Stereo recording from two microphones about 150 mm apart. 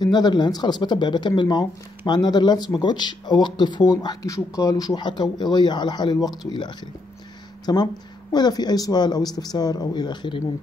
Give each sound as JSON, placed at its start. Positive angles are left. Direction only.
{"t": 0.0, "sound": "speech", "side_deg": 30}